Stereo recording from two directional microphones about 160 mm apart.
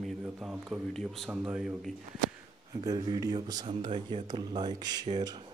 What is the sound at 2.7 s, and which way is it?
Speech, 30° right (ahead or behind).